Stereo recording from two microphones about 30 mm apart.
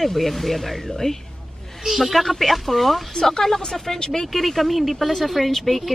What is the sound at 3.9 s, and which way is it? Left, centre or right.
Speech, left.